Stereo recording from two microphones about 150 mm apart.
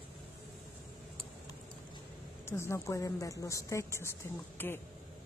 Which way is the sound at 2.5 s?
15° left (ahead or behind).